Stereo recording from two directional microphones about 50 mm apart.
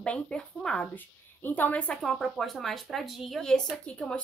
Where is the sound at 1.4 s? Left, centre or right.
Left.